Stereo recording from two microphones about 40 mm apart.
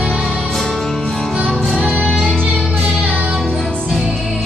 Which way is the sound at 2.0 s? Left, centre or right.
Centre.